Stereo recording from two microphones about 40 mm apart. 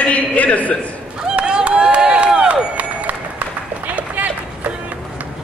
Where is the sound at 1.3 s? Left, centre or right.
Right.